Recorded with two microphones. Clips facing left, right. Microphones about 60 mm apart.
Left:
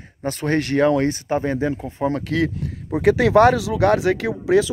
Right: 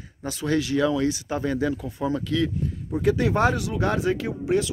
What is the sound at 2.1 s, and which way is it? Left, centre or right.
Speech, left.